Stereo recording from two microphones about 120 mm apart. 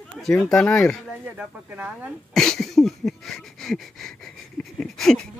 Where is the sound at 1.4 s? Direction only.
15° right (ahead or behind).